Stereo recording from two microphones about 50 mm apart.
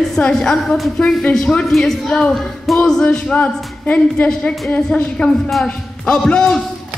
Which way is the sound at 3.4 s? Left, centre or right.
Left.